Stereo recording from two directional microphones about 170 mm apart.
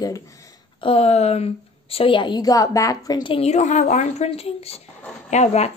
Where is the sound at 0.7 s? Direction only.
35° left (ahead or behind).